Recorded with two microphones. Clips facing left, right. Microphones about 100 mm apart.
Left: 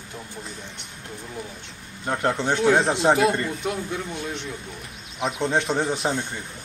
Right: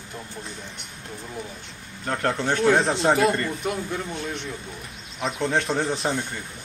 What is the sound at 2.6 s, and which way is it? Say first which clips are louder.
A man's voice: left 1 dB; 5° left (ahead or behind).